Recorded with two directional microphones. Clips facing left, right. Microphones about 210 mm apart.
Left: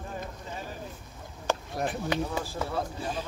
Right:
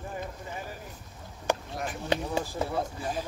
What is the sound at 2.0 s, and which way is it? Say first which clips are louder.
Speech: right 1 dB; 25° right (ahead or behind).